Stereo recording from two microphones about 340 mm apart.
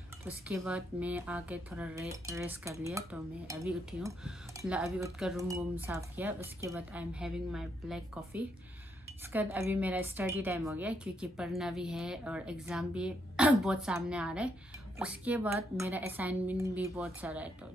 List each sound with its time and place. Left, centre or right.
0.2 s speech: centre